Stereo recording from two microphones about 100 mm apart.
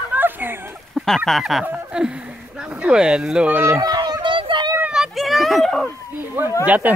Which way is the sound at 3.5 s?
20° right (ahead or behind).